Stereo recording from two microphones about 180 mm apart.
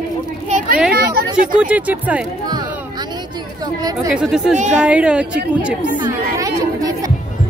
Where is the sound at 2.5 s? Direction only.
20° right (ahead or behind).